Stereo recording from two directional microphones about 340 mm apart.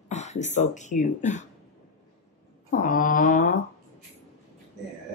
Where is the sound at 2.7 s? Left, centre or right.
Left.